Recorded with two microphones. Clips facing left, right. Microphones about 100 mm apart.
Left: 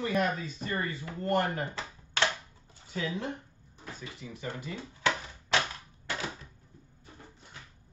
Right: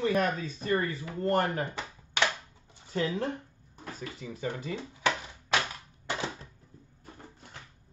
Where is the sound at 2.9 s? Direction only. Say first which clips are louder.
Right 4 dB; 40° right (ahead or behind).